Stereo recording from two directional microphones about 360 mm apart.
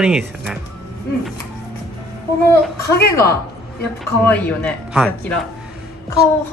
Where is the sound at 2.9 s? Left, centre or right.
Left.